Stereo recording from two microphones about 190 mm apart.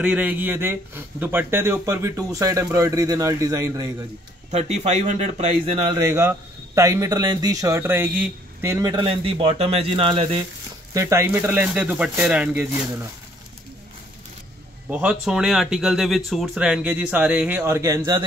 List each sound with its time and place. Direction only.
0.0 s a man's voice: 5° right (ahead or behind)
4.5 s speech: 35° right (ahead or behind)
5.9 s a man's voice: 20° right (ahead or behind)
10.9 s a man's voice: 15° right (ahead or behind)
14.9 s speech: 5° right (ahead or behind)